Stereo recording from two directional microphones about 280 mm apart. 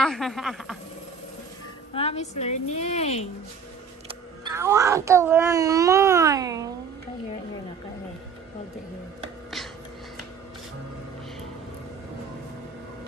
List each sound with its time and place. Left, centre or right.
0.0 s speech: centre
2.0 s a woman's voice: left
4.5 s a child's voice: centre